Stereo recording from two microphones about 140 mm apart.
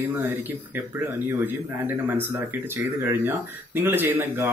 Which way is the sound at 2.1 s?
15° right (ahead or behind).